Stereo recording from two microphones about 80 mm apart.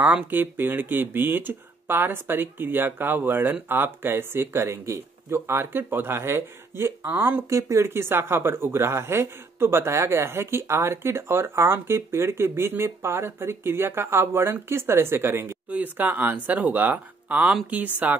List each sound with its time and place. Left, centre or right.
0.0 s speech: right
7.5 s speech: right; by 18.1 s centre